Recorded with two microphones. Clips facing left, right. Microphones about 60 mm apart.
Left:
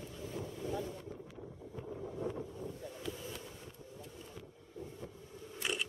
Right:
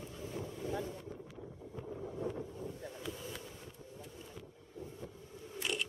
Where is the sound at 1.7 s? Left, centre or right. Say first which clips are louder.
Even; centre.